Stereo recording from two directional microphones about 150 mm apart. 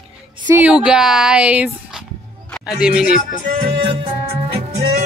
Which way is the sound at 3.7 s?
35° right (ahead or behind).